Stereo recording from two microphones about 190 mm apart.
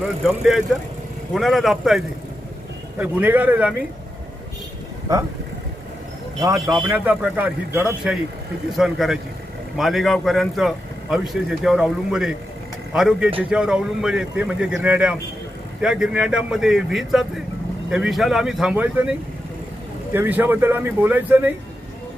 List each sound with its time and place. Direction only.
0.3 s a man's voice: 5° right (ahead or behind)
5.1 s speech: 15° right (ahead or behind)
6.4 s a man's voice: 20° right (ahead or behind)
7.1 s a man's voice: 10° right (ahead or behind)